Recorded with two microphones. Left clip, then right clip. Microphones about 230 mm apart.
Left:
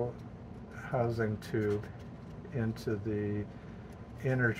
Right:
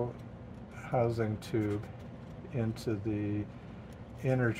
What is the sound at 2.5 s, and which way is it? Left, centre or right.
Speech, right.